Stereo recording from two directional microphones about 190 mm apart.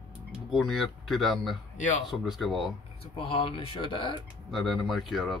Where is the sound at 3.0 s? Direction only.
30° left (ahead or behind).